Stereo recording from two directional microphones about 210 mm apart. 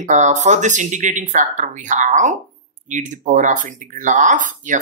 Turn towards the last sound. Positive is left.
turn(degrees=-35)  # may be behind; listen again after turning